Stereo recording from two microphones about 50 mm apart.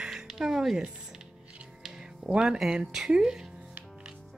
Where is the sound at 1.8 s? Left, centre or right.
Centre.